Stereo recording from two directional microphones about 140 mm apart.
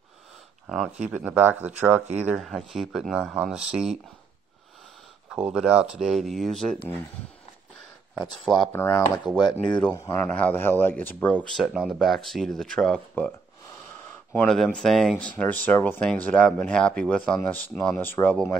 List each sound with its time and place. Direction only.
0.7 s speech: centre (ahead or behind)
2.4 s speech: centre (ahead or behind)
5.3 s speech: 5° right (ahead or behind)
8.2 s speech: centre (ahead or behind)
8.7 s speech: 15° left (ahead or behind)
9.4 s speech: 30° left (ahead or behind)
9.9 s speech: 20° left (ahead or behind)
11.4 s speech: centre (ahead or behind)
14.3 s speech: 5° left (ahead or behind)